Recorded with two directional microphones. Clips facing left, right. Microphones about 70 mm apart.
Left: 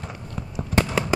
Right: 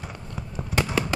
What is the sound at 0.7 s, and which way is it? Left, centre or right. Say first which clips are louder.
Fireworks: left 4 dB; centre.